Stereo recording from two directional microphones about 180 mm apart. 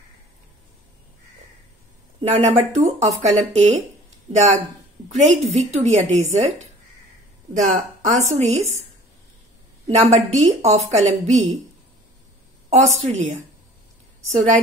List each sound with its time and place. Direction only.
2.3 s speech: 35° right (ahead or behind)
7.7 s speech: 40° right (ahead or behind)
9.8 s speech: 40° right (ahead or behind)
12.6 s a woman's voice: 40° right (ahead or behind)